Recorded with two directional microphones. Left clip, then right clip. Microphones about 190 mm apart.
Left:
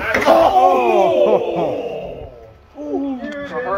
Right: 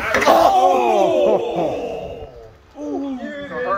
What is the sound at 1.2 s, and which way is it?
Music, centre (ahead or behind).